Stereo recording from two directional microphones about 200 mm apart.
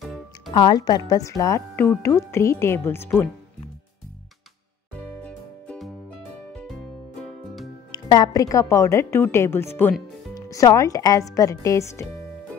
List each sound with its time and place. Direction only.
0.6 s a woman's voice: 20° left (ahead or behind)
5.2 s music: 5° left (ahead or behind)
7.9 s a woman's voice: 20° left (ahead or behind)